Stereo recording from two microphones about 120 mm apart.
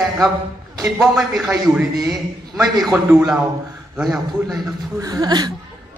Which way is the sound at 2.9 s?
10° right (ahead or behind).